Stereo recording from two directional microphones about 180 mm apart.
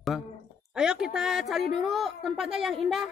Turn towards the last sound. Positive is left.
turn(degrees=0)  # may be behind; listen again after turning